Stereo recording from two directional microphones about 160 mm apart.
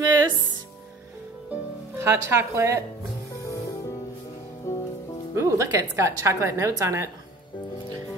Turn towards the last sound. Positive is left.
turn(degrees=-20)  # may be behind; listen again after turning